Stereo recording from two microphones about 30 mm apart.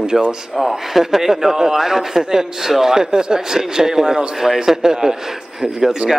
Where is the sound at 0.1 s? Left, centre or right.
Centre.